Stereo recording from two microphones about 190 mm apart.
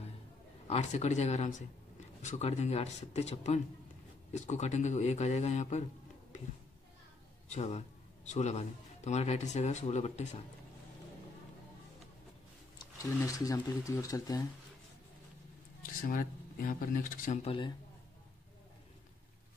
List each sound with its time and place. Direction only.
0.7 s speech: 35° left (ahead or behind)
7.4 s speech: 35° left (ahead or behind)
12.7 s speech: 20° left (ahead or behind)
15.8 s speech: 45° left (ahead or behind); by 17.7 s 25° left (ahead or behind)